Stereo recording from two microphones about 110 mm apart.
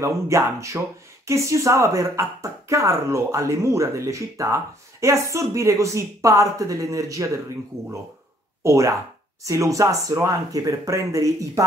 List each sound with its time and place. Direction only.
0.0 s speech: 25° right (ahead or behind)